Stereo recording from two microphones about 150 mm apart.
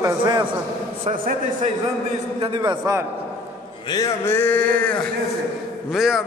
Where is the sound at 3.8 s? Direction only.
25° left (ahead or behind).